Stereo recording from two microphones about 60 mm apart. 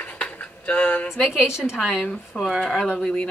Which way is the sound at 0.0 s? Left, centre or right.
Left.